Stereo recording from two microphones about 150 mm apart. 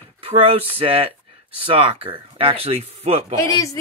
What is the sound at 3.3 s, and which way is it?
Speech, 20° left (ahead or behind).